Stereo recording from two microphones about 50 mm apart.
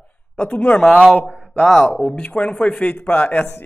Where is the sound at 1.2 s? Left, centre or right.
Left.